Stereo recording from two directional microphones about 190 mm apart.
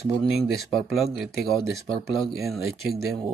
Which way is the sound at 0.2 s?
Centre (ahead or behind).